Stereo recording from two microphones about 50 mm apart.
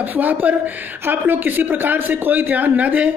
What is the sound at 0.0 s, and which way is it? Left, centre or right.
Speech, right.